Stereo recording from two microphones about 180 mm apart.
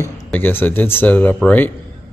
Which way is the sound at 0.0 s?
10° left (ahead or behind).